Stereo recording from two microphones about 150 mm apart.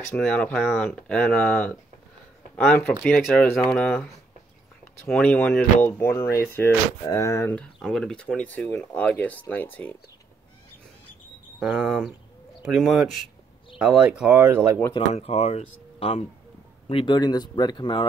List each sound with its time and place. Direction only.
0.0 s speech: 10° left (ahead or behind)
11.6 s speech: centre (ahead or behind)
15.0 s speech: 45° left (ahead or behind)
16.9 s speech: 30° left (ahead or behind)